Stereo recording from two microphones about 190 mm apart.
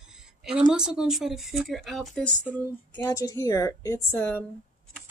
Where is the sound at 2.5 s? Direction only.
15° left (ahead or behind).